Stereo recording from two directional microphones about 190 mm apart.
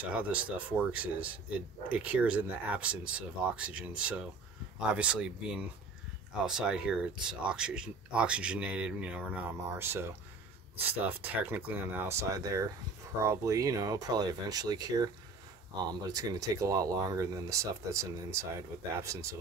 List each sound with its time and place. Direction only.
0.0 s speech: 10° right (ahead or behind)